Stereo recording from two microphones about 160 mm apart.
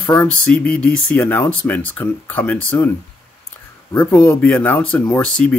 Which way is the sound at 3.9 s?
15° left (ahead or behind).